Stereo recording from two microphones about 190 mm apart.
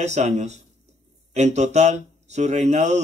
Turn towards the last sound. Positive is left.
turn(degrees=-35)  # may be behind; listen again after turning